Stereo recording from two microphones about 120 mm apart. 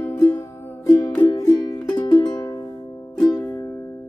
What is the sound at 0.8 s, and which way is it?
Music, 35° left (ahead or behind).